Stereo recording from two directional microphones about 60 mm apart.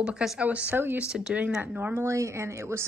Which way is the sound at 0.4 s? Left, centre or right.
Right.